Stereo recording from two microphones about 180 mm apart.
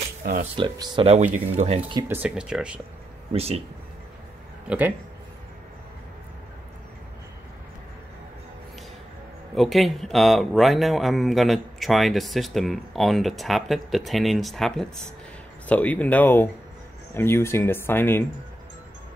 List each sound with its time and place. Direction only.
0.2 s speech: 45° right (ahead or behind)
0.6 s speech: 25° right (ahead or behind)
1.0 s speech: 40° right (ahead or behind)
2.0 s speech: 10° right (ahead or behind)
3.3 s speech: 35° right (ahead or behind)
4.6 s speech: 10° right (ahead or behind)
9.6 s speech: centre (ahead or behind)